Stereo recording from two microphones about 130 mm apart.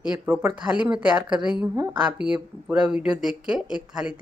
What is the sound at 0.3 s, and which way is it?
Speech, 15° right (ahead or behind).